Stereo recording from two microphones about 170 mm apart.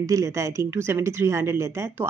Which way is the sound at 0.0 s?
20° right (ahead or behind).